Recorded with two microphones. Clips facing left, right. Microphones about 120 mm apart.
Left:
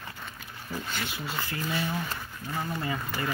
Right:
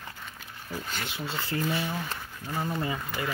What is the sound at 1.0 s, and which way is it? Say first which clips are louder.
Speech: right 1 dB; 25° right (ahead or behind).